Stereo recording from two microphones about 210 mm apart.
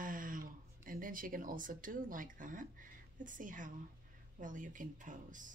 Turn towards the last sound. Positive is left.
turn(degrees=-40)  # may be behind; listen again after turning